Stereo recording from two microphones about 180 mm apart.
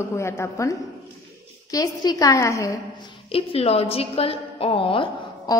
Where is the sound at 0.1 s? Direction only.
15° left (ahead or behind).